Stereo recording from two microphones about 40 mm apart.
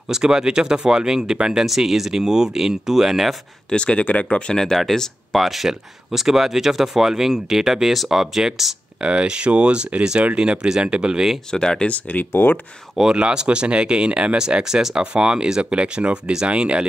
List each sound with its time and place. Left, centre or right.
0.1 s speech: centre
3.7 s speech: left
4.5 s speech: centre
5.3 s speech: centre
9.0 s speech: right
11.5 s speech: centre
11.8 s speech: left
13.1 s speech: right